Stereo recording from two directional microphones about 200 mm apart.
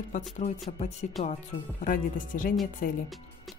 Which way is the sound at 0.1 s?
35° left (ahead or behind).